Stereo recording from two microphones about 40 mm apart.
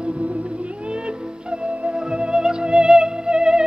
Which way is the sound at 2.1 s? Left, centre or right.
Right.